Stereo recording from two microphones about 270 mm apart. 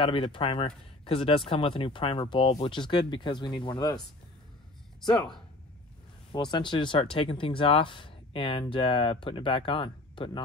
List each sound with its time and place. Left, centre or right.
0.0 s speech: centre
5.0 s speech: centre